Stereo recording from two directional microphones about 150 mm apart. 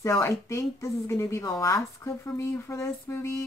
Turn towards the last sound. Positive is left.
turn(degrees=20)  # may be behind; listen again after turning